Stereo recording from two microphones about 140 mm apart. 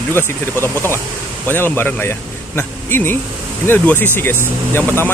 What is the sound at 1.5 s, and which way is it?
Speech, 15° left (ahead or behind).